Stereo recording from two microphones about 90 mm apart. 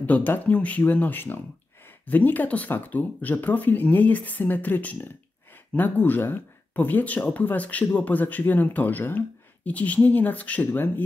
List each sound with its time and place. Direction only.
0.0 s speech: 20° left (ahead or behind)